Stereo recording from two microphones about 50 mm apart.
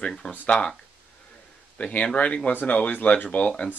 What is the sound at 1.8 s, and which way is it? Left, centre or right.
Speech, left.